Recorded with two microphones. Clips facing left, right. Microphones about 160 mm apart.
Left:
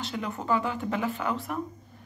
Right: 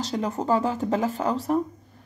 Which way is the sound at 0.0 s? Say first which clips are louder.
Right 6 dB; 40° right (ahead or behind).